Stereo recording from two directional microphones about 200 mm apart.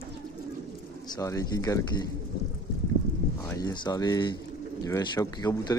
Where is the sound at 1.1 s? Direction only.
15° left (ahead or behind).